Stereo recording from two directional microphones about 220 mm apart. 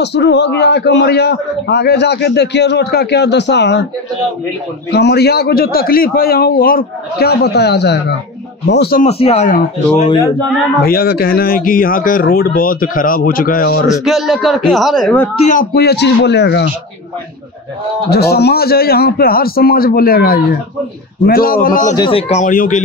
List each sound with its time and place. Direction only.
0.0 s a man's voice: 50° left (ahead or behind)
4.9 s a man's voice: 45° left (ahead or behind)
9.0 s speech: 30° left (ahead or behind)
10.8 s speech: 45° left (ahead or behind)
14.0 s speech: centre (ahead or behind)
15.4 s a man's voice: 40° left (ahead or behind)
18.1 s a man's voice: 45° left (ahead or behind)
21.9 s speech: 25° left (ahead or behind)